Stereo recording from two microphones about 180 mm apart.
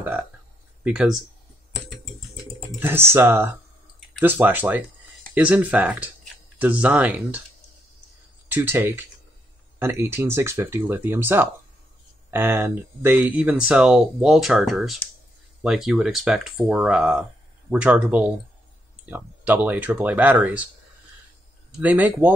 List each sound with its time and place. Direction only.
0.8 s speech: 5° right (ahead or behind)
2.8 s speech: 10° right (ahead or behind)
8.5 s speech: 10° right (ahead or behind)
21.7 s speech: 10° right (ahead or behind)